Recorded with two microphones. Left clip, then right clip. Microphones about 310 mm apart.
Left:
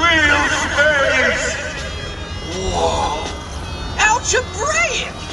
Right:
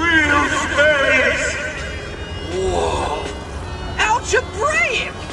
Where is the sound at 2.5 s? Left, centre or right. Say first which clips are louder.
Left 1 dB; centre.